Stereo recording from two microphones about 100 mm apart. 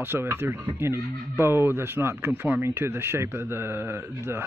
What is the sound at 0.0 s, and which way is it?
Speech, 20° right (ahead or behind).